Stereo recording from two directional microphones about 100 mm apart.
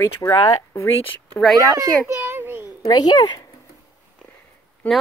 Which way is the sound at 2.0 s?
20° right (ahead or behind).